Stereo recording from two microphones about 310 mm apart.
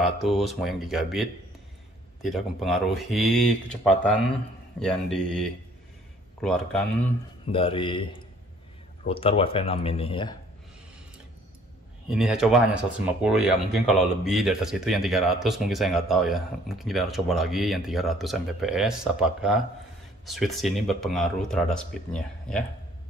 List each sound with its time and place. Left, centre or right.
0.0 s speech: centre
7.5 s speech: centre
9.0 s speech: centre
12.1 s speech: centre